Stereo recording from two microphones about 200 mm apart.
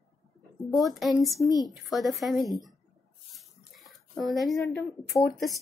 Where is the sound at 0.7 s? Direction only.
Centre (ahead or behind).